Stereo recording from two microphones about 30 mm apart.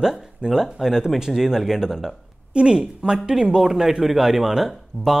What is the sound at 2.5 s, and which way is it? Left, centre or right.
Speech, right.